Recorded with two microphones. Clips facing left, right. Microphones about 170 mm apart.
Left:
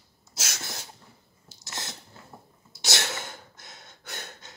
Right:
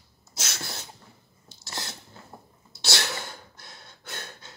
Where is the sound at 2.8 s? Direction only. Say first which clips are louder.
Right 1 dB; 20° left (ahead or behind).